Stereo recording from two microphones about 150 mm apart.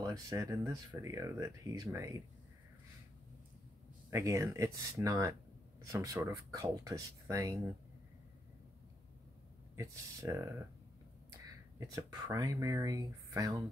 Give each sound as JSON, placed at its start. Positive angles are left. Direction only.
{"t": 0.0, "sound": "speech", "side_deg": -20}
{"t": 4.1, "sound": "speech", "side_deg": -20}
{"t": 9.8, "sound": "speech", "side_deg": -20}
{"t": 11.8, "sound": "speech", "side_deg": -25}